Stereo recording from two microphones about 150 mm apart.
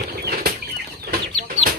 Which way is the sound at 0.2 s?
80° right.